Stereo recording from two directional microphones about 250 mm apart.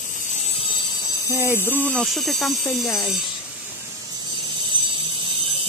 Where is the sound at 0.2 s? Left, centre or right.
Left.